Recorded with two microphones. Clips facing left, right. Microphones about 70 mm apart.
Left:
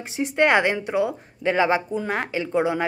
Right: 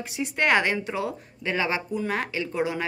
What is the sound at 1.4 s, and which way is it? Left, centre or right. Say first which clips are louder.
A woman's voice: left 7 dB; left.